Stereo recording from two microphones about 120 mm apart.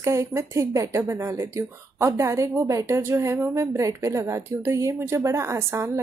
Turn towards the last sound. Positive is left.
turn(degrees=-20)  # may be behind; listen again after turning